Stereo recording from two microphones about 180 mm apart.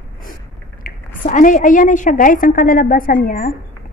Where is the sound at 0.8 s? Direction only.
45° left (ahead or behind).